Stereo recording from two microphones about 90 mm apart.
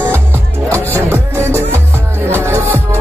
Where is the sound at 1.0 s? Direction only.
25° right (ahead or behind).